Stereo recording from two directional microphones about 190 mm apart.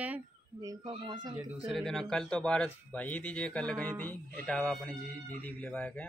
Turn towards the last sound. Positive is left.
turn(degrees=5)  # may be behind; listen again after turning